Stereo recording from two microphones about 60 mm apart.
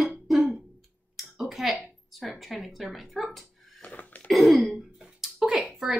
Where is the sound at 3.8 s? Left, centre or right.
Left.